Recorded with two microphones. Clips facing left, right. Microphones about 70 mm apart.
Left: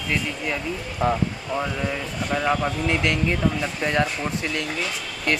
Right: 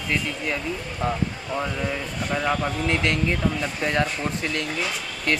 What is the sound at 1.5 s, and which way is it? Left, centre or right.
Speech, centre.